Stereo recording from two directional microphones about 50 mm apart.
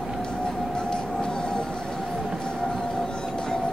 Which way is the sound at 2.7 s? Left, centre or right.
Centre.